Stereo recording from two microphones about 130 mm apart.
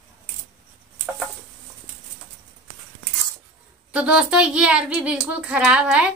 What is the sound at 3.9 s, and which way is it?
Speech, 10° right (ahead or behind).